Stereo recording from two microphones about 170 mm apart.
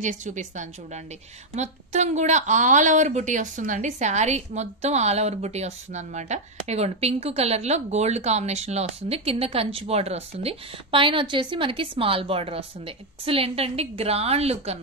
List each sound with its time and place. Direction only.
0.0 s a woman's voice: 45° right (ahead or behind)